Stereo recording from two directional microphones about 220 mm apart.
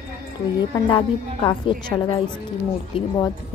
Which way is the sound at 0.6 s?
20° left (ahead or behind).